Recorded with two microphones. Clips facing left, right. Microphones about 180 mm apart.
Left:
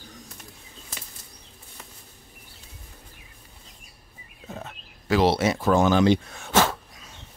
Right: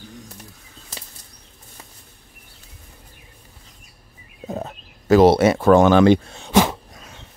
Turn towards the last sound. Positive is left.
turn(degrees=-15)  # may be behind; listen again after turning